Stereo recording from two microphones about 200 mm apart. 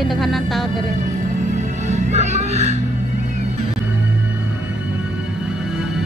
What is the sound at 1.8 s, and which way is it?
Music, 35° right (ahead or behind).